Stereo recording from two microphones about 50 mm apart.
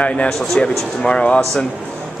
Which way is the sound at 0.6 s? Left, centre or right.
Left.